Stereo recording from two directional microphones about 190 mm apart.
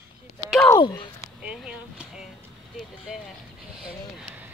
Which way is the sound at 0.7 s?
25° left (ahead or behind).